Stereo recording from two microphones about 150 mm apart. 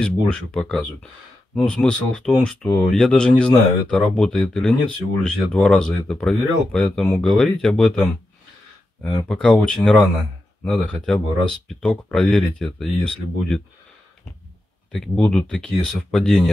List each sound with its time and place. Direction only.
0.0 s speech: 5° left (ahead or behind)
9.3 s speech: 5° left (ahead or behind)
14.9 s speech: 5° left (ahead or behind)